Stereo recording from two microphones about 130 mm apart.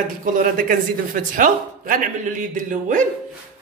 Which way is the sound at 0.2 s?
90° right.